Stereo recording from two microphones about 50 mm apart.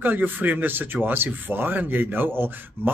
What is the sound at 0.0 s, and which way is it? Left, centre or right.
Speech, right.